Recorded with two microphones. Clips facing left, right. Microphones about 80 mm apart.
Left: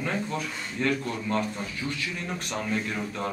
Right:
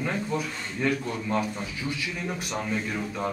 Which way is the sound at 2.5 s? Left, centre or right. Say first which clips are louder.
Left 1 dB; centre.